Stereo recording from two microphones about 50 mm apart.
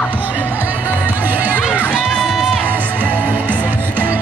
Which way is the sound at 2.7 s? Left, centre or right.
Right.